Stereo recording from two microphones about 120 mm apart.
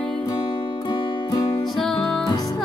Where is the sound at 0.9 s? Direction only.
40° left (ahead or behind).